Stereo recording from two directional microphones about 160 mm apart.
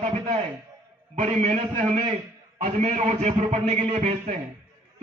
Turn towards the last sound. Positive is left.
turn(degrees=-45)  # may be behind; listen again after turning